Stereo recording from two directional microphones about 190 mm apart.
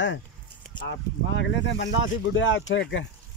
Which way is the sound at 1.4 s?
70° left (ahead or behind).